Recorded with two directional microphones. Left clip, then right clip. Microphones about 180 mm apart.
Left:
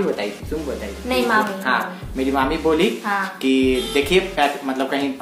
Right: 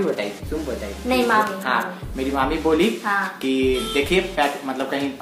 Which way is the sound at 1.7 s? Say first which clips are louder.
Left 2 dB; 15° left (ahead or behind).